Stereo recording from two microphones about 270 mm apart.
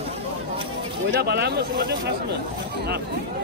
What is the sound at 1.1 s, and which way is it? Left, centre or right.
Speech, right.